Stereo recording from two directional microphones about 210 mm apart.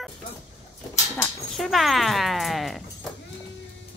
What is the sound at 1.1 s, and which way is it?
Music, 5° left (ahead or behind).